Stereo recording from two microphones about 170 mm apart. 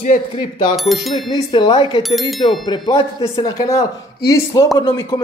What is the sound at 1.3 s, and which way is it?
Speech, 30° left (ahead or behind).